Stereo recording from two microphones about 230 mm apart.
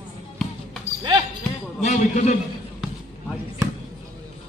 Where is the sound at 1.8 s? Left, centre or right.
Left.